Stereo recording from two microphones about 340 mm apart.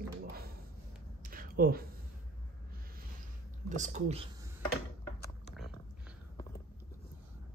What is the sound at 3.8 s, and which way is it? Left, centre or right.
Speech, centre.